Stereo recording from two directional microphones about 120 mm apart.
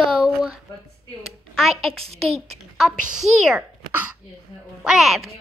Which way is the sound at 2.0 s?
55° right (ahead or behind).